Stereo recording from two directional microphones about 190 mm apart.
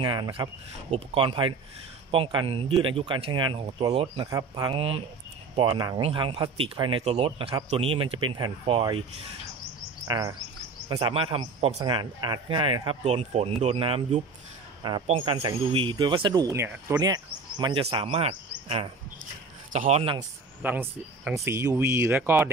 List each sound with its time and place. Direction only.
0.0 s a man's voice: 25° right (ahead or behind)
10.0 s chirp: 20° right (ahead or behind)
10.9 s a man's voice: 25° right (ahead or behind); by 17.0 s 10° right (ahead or behind)
17.0 s a man's voice: 20° right (ahead or behind)
19.7 s speech: 35° right (ahead or behind)
20.6 s speech: 10° right (ahead or behind)